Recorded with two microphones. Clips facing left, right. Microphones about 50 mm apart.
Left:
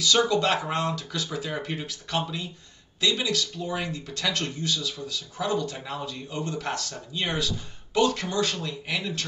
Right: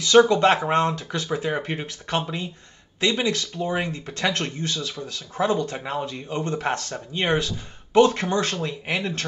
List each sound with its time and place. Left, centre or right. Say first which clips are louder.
0.0 s speech: right 7 dB; right